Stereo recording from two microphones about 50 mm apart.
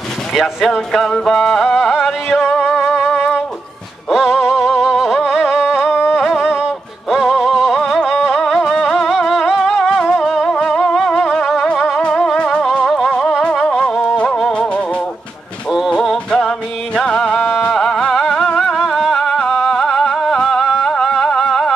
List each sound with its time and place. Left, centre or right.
0.3 s speech: centre
0.9 s music: centre
1.8 s music: centre
6.1 s music: centre
6.4 s music: centre
7.7 s music: centre
9.3 s music: centre
9.8 s music: centre
10.2 s music: centre
10.5 s music: centre
11.0 s music: centre
12.8 s music: centre
13.7 s music: centre
16.0 s music: centre